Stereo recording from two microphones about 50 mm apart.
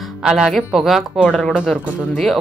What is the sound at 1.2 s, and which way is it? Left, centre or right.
Speech, left.